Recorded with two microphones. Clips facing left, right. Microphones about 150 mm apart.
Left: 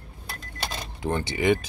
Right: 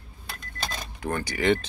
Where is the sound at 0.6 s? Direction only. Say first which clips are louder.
Left 2 dB; 25° left (ahead or behind).